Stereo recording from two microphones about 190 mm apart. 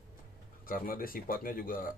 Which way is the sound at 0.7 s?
50° left (ahead or behind).